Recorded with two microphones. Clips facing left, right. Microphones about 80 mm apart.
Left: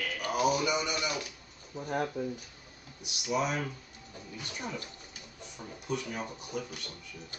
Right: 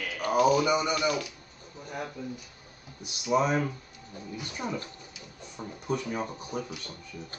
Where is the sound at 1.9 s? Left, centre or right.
Left.